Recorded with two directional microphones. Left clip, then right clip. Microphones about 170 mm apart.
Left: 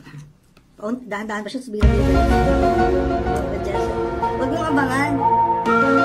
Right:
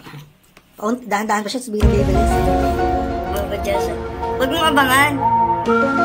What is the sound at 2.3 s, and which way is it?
Music, centre (ahead or behind).